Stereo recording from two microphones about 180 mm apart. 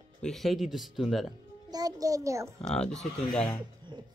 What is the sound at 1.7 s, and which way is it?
Speech, 20° right (ahead or behind).